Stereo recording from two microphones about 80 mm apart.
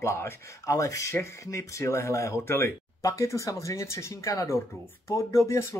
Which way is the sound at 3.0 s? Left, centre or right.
Left.